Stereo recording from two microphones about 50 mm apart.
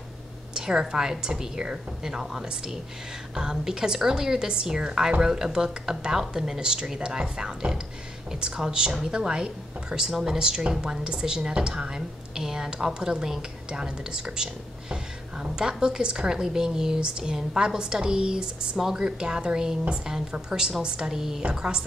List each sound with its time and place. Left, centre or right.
0.6 s a woman's voice: centre